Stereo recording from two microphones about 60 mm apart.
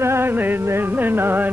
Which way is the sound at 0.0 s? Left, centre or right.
Right.